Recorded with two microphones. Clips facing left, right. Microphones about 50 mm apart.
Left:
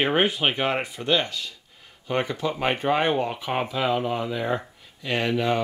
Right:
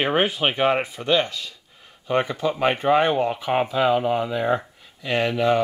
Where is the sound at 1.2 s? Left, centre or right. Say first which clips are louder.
Right 3 dB; right.